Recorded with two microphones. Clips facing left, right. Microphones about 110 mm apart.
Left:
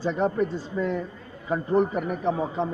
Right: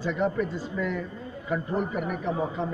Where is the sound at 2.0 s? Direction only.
30° left (ahead or behind).